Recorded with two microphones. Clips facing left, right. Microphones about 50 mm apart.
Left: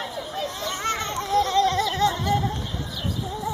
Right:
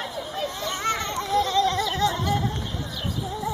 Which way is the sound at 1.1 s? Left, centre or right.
Left.